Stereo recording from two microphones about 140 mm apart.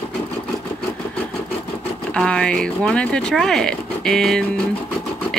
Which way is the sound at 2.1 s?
5° left (ahead or behind).